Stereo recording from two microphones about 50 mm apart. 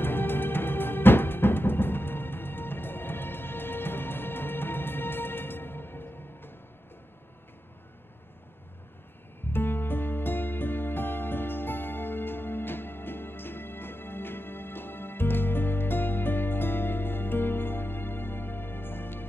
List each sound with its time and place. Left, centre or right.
0.0 s music: left
9.5 s music: left